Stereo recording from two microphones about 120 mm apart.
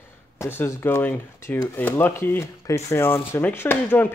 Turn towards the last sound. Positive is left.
turn(degrees=15)  # may be behind; listen again after turning